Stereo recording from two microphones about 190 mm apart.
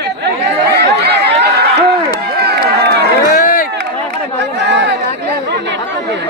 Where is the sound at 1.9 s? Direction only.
55° right (ahead or behind).